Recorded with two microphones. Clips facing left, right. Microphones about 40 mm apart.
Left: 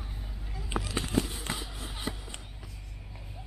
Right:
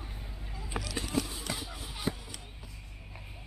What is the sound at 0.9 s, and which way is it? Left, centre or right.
Run, left.